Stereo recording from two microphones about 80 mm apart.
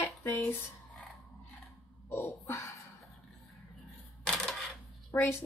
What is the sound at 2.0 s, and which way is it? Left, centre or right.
Speech, left.